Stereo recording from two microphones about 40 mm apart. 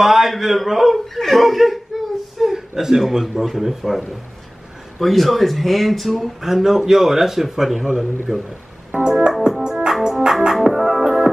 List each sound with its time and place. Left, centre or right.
0.0 s speech: centre
2.3 s whimper: centre
2.7 s speech: centre
5.0 s speech: centre
9.0 s keyboard: right
9.4 s organ: centre
10.0 s music: centre